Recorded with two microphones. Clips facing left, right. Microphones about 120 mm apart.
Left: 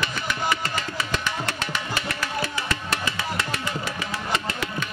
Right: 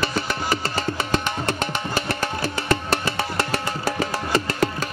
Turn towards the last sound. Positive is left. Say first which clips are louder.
# right 5 dB
turn(degrees=-40)  # may be behind; listen again after turning